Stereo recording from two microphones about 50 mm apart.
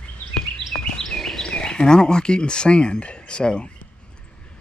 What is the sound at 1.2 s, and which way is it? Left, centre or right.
Speech, centre.